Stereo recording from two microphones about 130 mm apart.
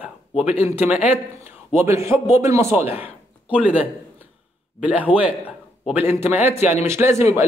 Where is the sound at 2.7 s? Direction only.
10° right (ahead or behind).